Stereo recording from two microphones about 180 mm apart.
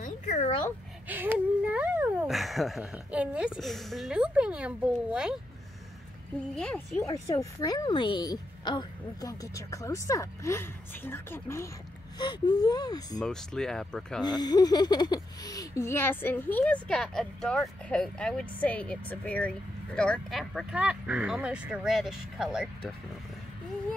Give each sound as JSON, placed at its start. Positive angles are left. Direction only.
{"t": 0.0, "sound": "dog", "side_deg": 45}
{"t": 1.0, "sound": "speech", "side_deg": -10}
{"t": 6.5, "sound": "speech", "side_deg": 5}
{"t": 7.0, "sound": "a woman's voice", "side_deg": 20}
{"t": 13.2, "sound": "speech", "side_deg": 5}
{"t": 14.2, "sound": "speech", "side_deg": 20}